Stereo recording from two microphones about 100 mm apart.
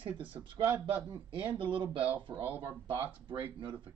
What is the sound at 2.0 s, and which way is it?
Speech, 15° right (ahead or behind).